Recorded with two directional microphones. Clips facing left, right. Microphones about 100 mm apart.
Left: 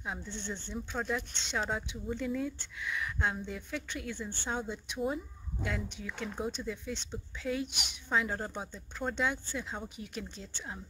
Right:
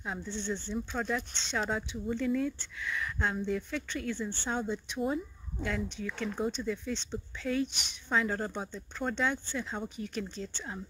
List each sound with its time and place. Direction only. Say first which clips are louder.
0.0 s speech: right 3 dB; 10° left (ahead or behind)